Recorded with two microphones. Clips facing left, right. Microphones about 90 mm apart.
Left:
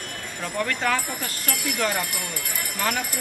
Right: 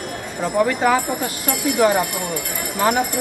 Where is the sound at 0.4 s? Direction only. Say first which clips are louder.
Right 9 dB; 15° right (ahead or behind).